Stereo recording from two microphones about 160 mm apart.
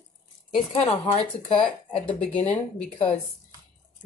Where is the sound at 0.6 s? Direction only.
35° left (ahead or behind).